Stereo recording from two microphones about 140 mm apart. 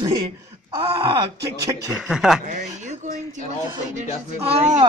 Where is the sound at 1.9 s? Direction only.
5° right (ahead or behind).